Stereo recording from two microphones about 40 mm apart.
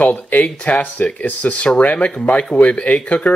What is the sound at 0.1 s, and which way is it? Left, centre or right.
Speech, left.